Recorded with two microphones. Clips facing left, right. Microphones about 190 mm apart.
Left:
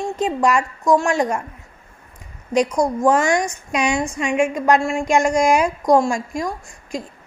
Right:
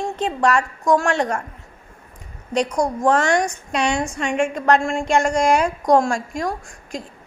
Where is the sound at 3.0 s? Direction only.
5° left (ahead or behind).